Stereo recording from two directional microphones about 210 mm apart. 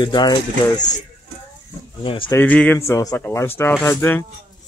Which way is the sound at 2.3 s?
5° left (ahead or behind).